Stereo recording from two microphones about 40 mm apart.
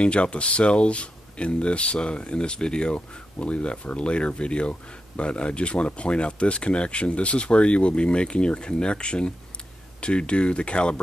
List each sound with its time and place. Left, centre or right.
0.0 s speech: left